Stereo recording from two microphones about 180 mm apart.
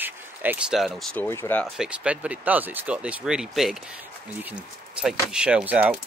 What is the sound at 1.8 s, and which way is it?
Speech, 5° right (ahead or behind).